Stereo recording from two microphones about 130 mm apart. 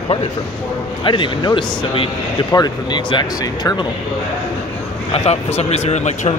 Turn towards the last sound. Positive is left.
turn(degrees=60)  # may be behind; listen again after turning